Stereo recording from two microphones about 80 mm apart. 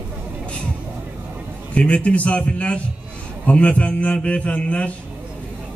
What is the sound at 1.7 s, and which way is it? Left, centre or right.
A man's voice, centre.